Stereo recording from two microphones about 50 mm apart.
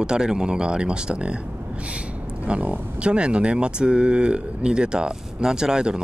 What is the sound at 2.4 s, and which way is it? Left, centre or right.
Speech, right.